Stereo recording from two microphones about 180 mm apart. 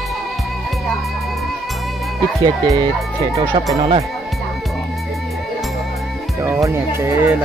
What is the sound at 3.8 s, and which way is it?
Speech, 35° right (ahead or behind).